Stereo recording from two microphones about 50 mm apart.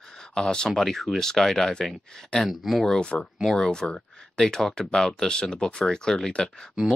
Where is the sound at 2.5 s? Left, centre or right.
Centre.